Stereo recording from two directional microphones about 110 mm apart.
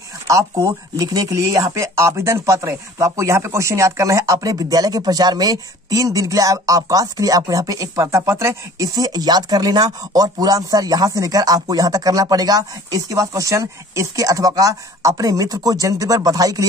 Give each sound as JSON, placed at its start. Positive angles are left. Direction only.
{"t": 0.3, "sound": "speech", "side_deg": -30}